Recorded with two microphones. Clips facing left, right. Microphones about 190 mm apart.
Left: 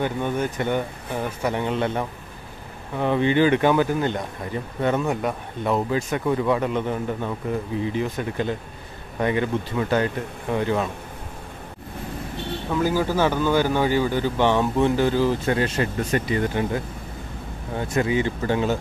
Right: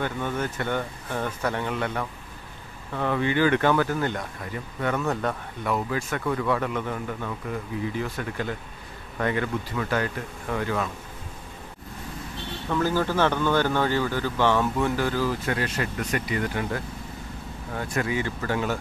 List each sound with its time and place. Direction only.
0.0 s speech: 15° left (ahead or behind)
5.6 s speech: 25° left (ahead or behind)
12.7 s speech: 10° left (ahead or behind)